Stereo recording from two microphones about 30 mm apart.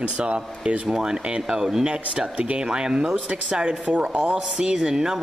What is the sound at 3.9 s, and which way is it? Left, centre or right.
Speech, right.